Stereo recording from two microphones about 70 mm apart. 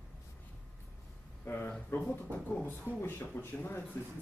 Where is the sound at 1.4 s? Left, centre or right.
Left.